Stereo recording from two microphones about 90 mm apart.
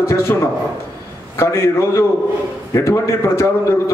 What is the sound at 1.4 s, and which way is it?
A man's voice, 30° left (ahead or behind).